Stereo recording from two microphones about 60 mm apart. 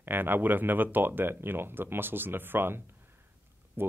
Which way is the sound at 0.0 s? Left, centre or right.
Right.